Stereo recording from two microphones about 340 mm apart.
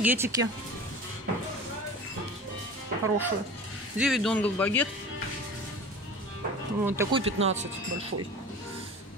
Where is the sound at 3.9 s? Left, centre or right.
Centre.